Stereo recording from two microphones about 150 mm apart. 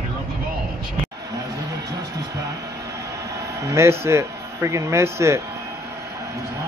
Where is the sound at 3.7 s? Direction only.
15° right (ahead or behind).